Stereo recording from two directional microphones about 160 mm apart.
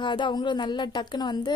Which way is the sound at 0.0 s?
30° left (ahead or behind).